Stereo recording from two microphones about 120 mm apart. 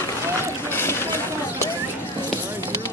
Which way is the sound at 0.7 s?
20° left (ahead or behind).